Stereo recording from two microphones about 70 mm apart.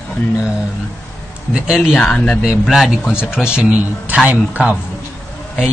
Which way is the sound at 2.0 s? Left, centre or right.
Centre.